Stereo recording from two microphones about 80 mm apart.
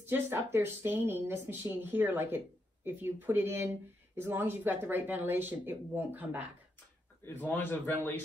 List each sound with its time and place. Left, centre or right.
0.0 s speech: right
7.2 s a man's voice: left